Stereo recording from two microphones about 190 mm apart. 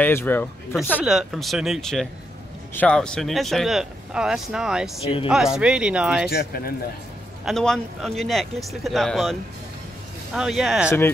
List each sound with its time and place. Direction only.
0.0 s a man's voice: 10° left (ahead or behind)
1.0 s speech: centre (ahead or behind)
5.0 s speech: 25° left (ahead or behind)
5.3 s speech: 5° right (ahead or behind)
7.4 s speech: centre (ahead or behind)
10.9 s a man's voice: 15° left (ahead or behind)